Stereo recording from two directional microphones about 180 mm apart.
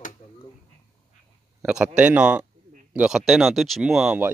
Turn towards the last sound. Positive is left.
turn(degrees=-5)  # may be behind; listen again after turning